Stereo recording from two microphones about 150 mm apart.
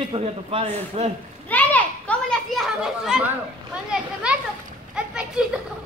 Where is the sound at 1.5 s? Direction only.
10° left (ahead or behind).